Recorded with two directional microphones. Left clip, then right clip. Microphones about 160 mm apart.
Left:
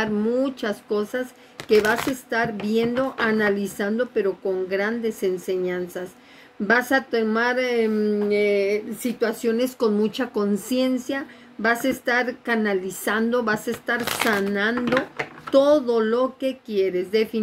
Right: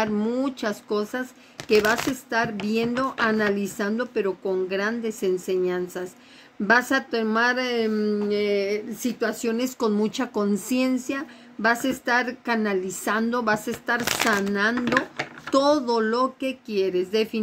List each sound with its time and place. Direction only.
0.0 s speech: 30° right (ahead or behind)